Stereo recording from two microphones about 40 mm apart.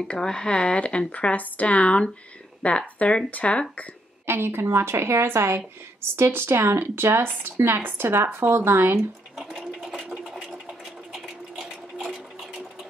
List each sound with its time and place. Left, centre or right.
0.2 s speech: centre
1.3 s a woman's voice: left
4.3 s a woman's voice: right
9.8 s sewing machine: centre